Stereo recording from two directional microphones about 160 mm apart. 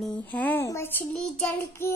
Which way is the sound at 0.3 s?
10° left (ahead or behind).